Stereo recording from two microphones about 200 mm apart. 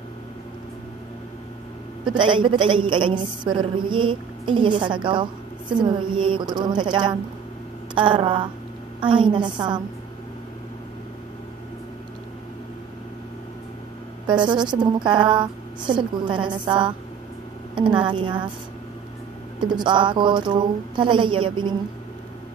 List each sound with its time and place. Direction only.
2.1 s a woman's voice: 25° right (ahead or behind)
14.2 s a woman's voice: 25° right (ahead or behind)
19.6 s a woman's voice: 20° right (ahead or behind)